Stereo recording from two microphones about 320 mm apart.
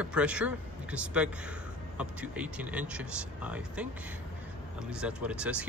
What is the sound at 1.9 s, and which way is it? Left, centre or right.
Speech, centre.